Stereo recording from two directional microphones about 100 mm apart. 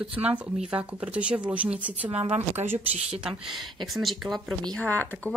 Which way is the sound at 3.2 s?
5° right (ahead or behind).